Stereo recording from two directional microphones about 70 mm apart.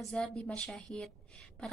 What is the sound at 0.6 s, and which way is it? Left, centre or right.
Speech, centre.